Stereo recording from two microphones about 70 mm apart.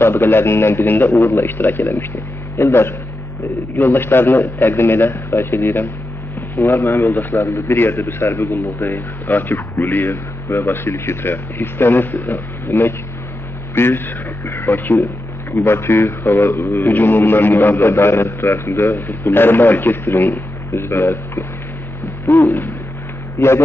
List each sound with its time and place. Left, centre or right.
0.0 s a man's voice: left
7.4 s a man's voice: left